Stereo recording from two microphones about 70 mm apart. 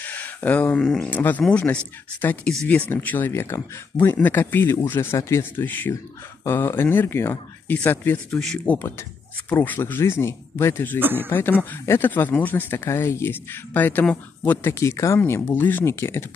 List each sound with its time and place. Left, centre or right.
0.0 s a sound: left
1.1 s speech: left
8.3 s speech: centre
8.7 s speech: left
9.5 s speech: left
11.0 s speech: right
11.2 s speech: left
11.8 s speech: left
12.1 s speech: left
14.7 s speech: left
15.4 s speech: left
15.8 s speech: left